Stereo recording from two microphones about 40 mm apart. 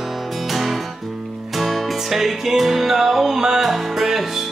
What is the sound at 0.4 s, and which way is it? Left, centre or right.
Music, centre.